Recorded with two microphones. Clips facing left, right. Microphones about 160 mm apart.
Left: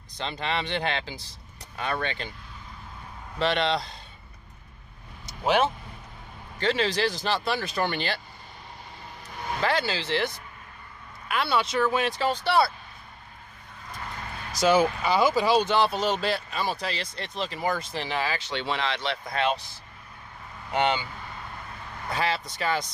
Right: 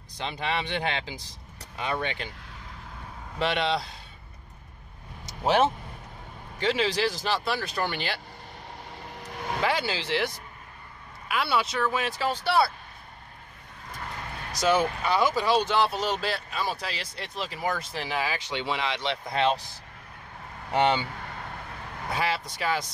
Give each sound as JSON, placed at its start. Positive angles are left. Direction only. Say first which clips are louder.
{"t": 0.2, "sound": "speech", "louder": "even", "side_deg": -10}
{"t": 3.3, "sound": "speech", "louder": "left 1 dB", "side_deg": -10}
{"t": 5.4, "sound": "speech", "louder": "right 1 dB", "side_deg": -25}
{"t": 6.6, "sound": "speech", "louder": "even", "side_deg": -10}
{"t": 9.1, "sound": "vehicle", "louder": "right 3 dB", "side_deg": -70}
{"t": 9.6, "sound": "speech", "louder": "left 1 dB", "side_deg": -10}
{"t": 14.5, "sound": "speech", "louder": "left 3 dB", "side_deg": 5}
{"t": 20.7, "sound": "speech", "louder": "right 2 dB", "side_deg": -30}
{"t": 22.1, "sound": "speech", "louder": "left 1 dB", "side_deg": -10}